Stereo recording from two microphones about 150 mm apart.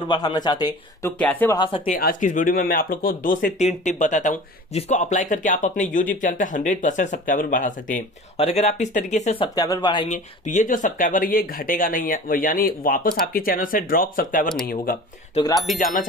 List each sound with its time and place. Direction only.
0.1 s speech: 30° left (ahead or behind)
1.1 s speech: 10° left (ahead or behind)
1.9 s speech: 75° left (ahead or behind)
8.4 s speech: 45° left (ahead or behind)
9.7 s speech: 30° left (ahead or behind)
10.0 s speech: 55° left (ahead or behind)
15.8 s speech: 60° left (ahead or behind)